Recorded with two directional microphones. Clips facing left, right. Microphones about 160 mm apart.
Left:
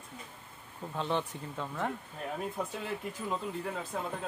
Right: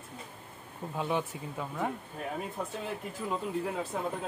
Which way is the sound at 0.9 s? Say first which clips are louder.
Right 1 dB; 10° right (ahead or behind).